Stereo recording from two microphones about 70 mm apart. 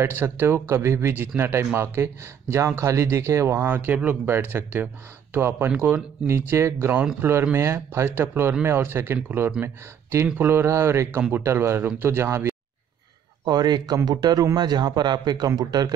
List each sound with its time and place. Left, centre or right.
0.0 s speech: right
3.7 s speech: right
13.5 s a man's voice: right